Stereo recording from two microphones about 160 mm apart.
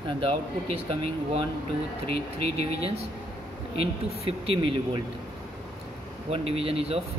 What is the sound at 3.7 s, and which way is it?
Speech, 40° right (ahead or behind).